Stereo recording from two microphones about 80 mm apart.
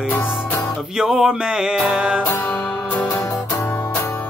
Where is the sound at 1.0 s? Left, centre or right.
Centre.